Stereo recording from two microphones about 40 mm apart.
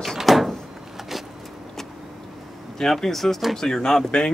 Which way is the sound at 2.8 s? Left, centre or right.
Centre.